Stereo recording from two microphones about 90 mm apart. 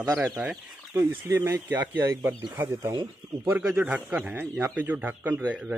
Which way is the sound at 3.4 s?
15° right (ahead or behind).